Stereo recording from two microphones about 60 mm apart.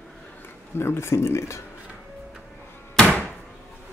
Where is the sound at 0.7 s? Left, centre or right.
Left.